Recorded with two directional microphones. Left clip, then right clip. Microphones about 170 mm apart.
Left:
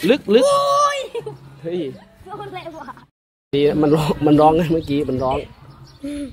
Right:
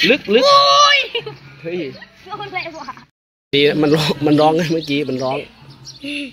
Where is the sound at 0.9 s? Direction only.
Centre (ahead or behind).